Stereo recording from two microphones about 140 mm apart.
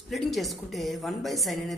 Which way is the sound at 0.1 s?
Centre (ahead or behind).